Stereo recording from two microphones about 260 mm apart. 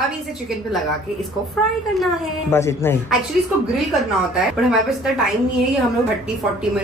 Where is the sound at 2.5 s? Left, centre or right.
Centre.